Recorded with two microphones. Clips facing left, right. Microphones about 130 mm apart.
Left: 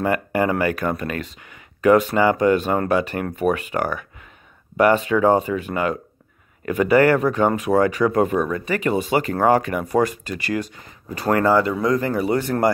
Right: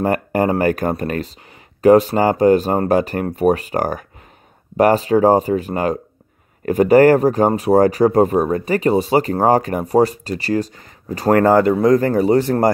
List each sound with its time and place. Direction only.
0.0 s speech: 40° right (ahead or behind)